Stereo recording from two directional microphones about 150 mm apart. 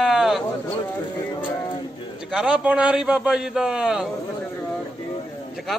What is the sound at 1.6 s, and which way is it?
Music, 30° left (ahead or behind).